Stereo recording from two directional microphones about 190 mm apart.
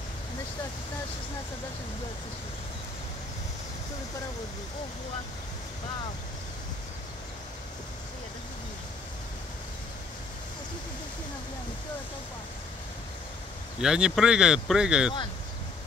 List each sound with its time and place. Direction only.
13.7 s speech: 5° right (ahead or behind)